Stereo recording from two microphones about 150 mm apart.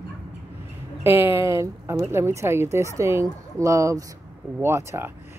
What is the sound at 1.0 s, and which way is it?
A woman's voice, 15° right (ahead or behind).